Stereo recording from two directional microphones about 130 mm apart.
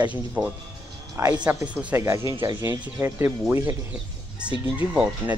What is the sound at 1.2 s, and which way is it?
Speech, 20° right (ahead or behind).